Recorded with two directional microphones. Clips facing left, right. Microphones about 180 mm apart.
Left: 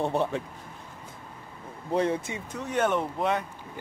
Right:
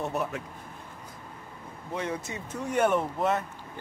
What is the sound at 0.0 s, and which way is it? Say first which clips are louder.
Speech: left 4 dB; 30° left (ahead or behind).